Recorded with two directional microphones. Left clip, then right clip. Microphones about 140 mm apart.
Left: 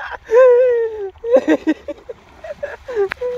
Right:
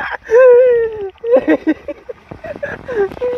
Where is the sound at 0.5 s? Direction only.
45° right (ahead or behind).